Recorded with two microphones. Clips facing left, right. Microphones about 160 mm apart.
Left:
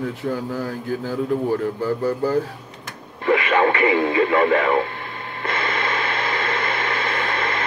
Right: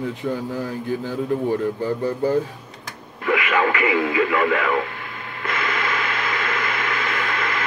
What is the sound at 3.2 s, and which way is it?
Radio, 30° left (ahead or behind).